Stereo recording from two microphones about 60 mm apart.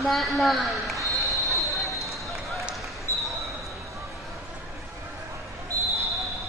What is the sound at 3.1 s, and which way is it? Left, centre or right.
Basketball bounce, left.